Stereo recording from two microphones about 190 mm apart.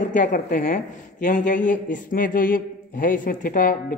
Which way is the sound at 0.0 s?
40° left (ahead or behind).